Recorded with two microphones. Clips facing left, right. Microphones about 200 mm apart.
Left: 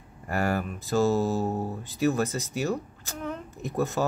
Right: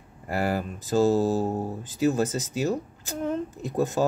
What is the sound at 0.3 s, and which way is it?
Speech, 15° right (ahead or behind).